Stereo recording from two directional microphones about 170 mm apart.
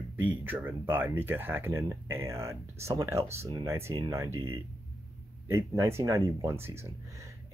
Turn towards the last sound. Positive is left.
turn(degrees=-15)  # may be behind; listen again after turning